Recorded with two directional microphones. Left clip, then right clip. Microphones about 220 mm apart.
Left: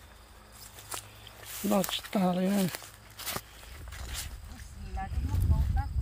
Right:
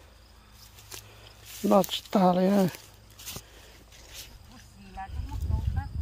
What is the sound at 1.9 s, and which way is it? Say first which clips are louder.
Speech: right 7 dB; 20° right (ahead or behind).